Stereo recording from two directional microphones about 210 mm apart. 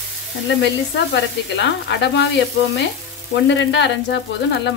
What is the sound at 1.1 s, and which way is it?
A woman's voice, 60° left (ahead or behind).